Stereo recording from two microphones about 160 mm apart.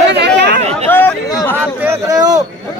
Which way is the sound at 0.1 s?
90° right.